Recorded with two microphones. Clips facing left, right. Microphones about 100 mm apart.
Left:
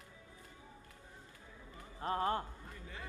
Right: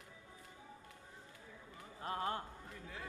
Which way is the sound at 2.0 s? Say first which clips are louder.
Left 5 dB; 50° left (ahead or behind).